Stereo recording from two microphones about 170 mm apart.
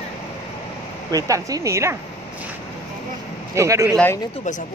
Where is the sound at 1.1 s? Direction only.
20° right (ahead or behind).